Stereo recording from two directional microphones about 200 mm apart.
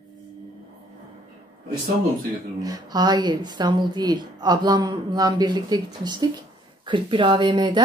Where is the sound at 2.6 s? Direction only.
20° right (ahead or behind).